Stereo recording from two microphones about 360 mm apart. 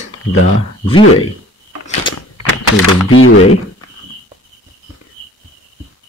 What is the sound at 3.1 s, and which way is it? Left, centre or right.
Speech, left.